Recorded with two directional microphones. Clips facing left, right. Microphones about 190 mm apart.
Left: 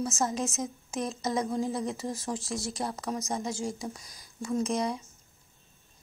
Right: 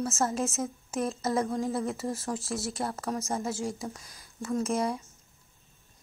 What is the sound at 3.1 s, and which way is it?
Speech, 15° left (ahead or behind).